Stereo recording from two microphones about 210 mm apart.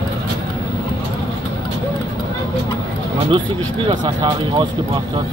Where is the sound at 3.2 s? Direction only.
25° right (ahead or behind).